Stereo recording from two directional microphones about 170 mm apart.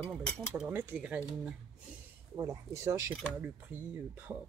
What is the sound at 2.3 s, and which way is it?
Speech, 20° right (ahead or behind).